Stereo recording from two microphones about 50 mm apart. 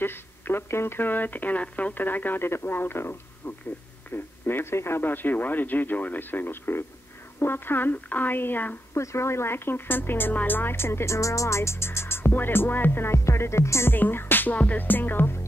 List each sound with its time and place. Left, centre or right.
0.0 s speech: left
4.7 s speech: left
5.0 s speech: left
8.9 s speech: left
12.3 s speech: left
13.2 s speech: left
13.9 s music: left
14.5 s music: left
14.8 s speech: left